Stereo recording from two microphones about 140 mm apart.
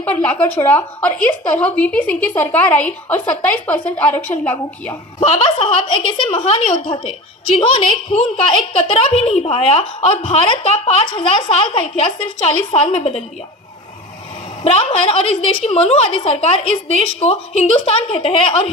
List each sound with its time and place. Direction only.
0.0 s a woman's voice: 10° left (ahead or behind)
5.2 s a woman's voice: 50° left (ahead or behind)
14.6 s a woman's voice: 45° left (ahead or behind)